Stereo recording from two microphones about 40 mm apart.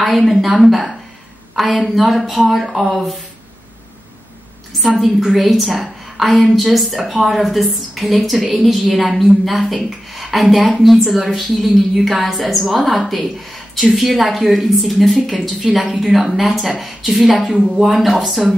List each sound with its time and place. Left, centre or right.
0.0 s speech: centre
4.8 s speech: centre